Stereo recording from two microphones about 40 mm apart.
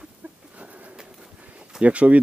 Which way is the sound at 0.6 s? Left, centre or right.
Right.